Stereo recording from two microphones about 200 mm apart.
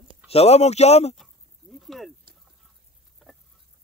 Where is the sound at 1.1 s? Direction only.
Centre (ahead or behind).